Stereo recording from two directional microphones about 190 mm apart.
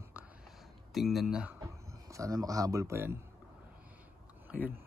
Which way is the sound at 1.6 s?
15° right (ahead or behind).